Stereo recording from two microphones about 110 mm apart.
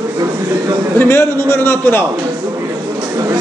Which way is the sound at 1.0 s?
25° left (ahead or behind).